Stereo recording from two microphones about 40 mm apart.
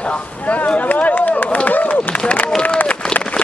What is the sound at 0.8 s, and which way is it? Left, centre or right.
Run, left.